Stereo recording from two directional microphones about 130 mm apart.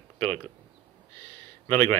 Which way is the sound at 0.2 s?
10° left (ahead or behind).